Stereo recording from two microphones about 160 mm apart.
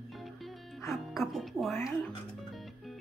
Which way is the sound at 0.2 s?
Centre (ahead or behind).